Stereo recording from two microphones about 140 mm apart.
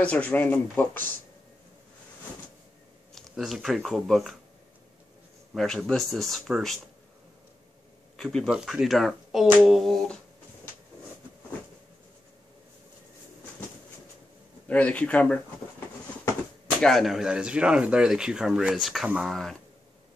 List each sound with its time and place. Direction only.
0.0 s speech: 10° left (ahead or behind)
3.2 s speech: centre (ahead or behind)
5.5 s speech: centre (ahead or behind)
8.2 s speech: centre (ahead or behind)
14.7 s speech: 10° left (ahead or behind)
16.8 s speech: centre (ahead or behind)
19.3 s speech: 5° left (ahead or behind)